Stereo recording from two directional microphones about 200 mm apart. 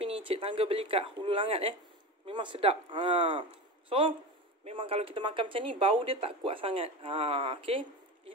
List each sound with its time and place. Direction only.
0.0 s speech: 30° right (ahead or behind)